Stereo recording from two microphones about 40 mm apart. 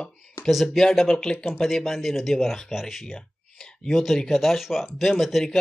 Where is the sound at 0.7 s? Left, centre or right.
Centre.